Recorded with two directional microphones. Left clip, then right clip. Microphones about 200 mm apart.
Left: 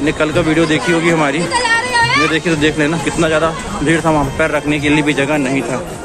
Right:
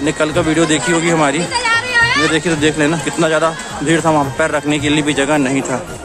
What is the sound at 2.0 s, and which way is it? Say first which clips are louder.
Chatter: left 1 dB; 25° right (ahead or behind).